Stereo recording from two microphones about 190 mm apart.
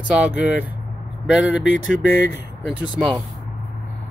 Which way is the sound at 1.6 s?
85° left.